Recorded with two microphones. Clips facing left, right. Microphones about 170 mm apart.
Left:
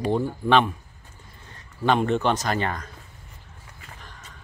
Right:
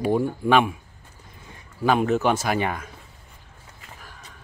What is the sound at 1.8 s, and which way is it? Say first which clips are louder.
Speech: right 1 dB; 5° right (ahead or behind).